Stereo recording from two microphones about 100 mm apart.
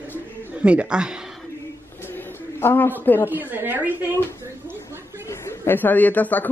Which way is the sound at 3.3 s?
20° right (ahead or behind).